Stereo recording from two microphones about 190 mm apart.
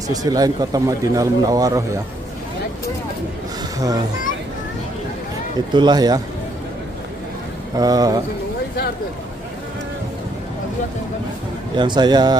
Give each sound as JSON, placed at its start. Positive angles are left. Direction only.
{"t": 0.1, "sound": "speech", "side_deg": -20}
{"t": 3.7, "sound": "speech", "side_deg": -20}
{"t": 5.7, "sound": "speech", "side_deg": -25}
{"t": 7.7, "sound": "speech", "side_deg": -20}
{"t": 11.7, "sound": "speech", "side_deg": -25}